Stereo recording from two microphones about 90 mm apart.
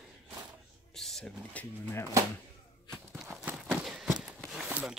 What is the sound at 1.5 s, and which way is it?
Speech, 20° left (ahead or behind).